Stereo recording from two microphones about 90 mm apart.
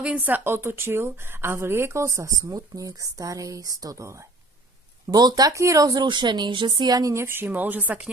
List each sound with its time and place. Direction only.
0.0 s a woman's voice: 15° right (ahead or behind); by 4.2 s 35° right (ahead or behind)
5.0 s a woman's voice: 45° right (ahead or behind)
5.9 s speech: 60° right (ahead or behind)
6.9 s speech: 45° right (ahead or behind)
7.2 s a woman's voice: 25° right (ahead or behind)